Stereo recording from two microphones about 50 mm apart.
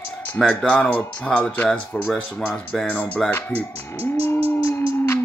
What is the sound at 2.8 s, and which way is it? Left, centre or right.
Speech, left.